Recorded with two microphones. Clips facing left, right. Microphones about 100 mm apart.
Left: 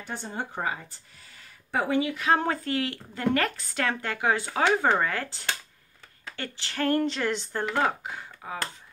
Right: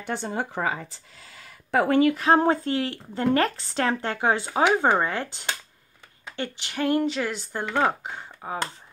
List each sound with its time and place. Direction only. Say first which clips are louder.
0.0 s speech: right 5 dB; 75° right (ahead or behind); by 0.7 s 90° right
1.3 s speech: right 6 dB; 80° right; by 2.1 s 55° right (ahead or behind)
2.1 s a woman's voice: right 5 dB; 35° right (ahead or behind)
4.5 s a woman's voice: right 3 dB; 15° right (ahead or behind)
7.7 s speech: right 4 dB; 20° right (ahead or behind)